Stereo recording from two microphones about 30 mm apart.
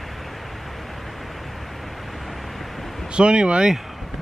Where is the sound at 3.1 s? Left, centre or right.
Right.